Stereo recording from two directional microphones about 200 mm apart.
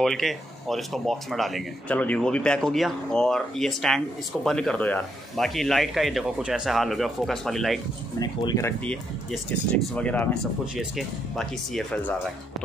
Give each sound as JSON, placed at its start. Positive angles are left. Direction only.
{"t": 0.0, "sound": "speech", "side_deg": 0}
{"t": 8.2, "sound": "speech", "side_deg": 20}